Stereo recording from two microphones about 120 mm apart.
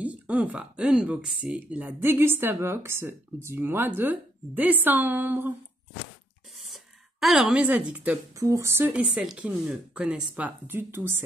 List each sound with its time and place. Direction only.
0.0 s speech: 10° right (ahead or behind)
6.7 s speech: centre (ahead or behind)
8.4 s speech: 25° right (ahead or behind)
9.0 s speech: 5° right (ahead or behind)